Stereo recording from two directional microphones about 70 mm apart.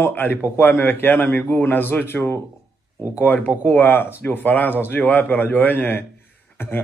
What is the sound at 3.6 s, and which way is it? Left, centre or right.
Speech, left.